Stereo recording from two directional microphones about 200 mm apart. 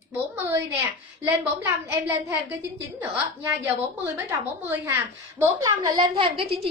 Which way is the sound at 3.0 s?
10° right (ahead or behind).